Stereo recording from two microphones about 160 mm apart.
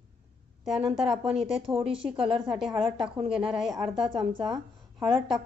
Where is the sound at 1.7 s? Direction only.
35° right (ahead or behind).